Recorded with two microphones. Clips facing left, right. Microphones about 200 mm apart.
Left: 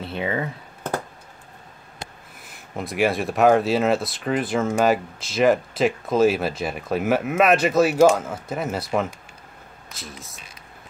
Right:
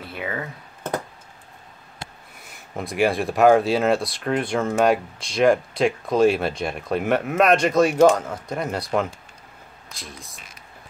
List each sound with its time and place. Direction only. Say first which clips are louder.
0.0 s speech: left 4 dB; 25° left (ahead or behind)
2.7 s speech: right 1 dB; centre (ahead or behind)